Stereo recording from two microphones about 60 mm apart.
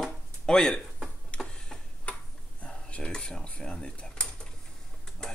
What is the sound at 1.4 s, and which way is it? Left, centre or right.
Tick-tock, centre.